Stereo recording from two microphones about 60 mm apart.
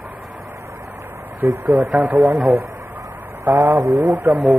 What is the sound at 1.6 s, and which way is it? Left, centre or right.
Speech, right.